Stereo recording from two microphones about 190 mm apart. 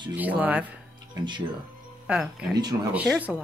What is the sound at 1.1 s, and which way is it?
Speech, 25° right (ahead or behind).